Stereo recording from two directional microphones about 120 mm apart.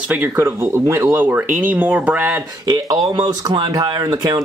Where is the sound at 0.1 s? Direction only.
20° right (ahead or behind).